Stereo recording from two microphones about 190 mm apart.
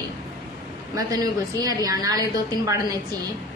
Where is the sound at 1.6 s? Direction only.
20° right (ahead or behind).